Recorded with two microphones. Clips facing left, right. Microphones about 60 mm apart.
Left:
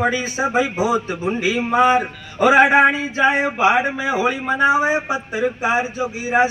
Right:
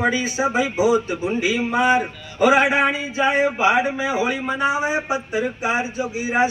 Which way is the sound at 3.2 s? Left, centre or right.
Left.